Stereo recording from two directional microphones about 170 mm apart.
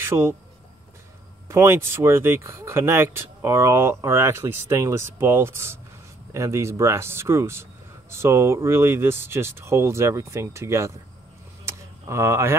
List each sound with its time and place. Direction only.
0.0 s speech: 15° right (ahead or behind)
1.5 s speech: 15° right (ahead or behind)
11.6 s a sound: 15° right (ahead or behind)